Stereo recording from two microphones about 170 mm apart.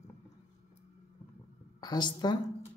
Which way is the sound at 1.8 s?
25° left (ahead or behind).